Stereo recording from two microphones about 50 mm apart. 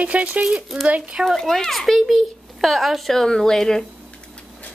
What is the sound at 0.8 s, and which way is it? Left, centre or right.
Speech, right.